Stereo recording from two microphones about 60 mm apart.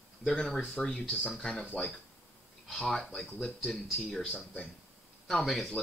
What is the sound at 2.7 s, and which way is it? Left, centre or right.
Speech, centre.